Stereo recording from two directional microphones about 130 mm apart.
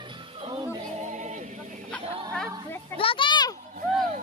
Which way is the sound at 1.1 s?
65° right (ahead or behind).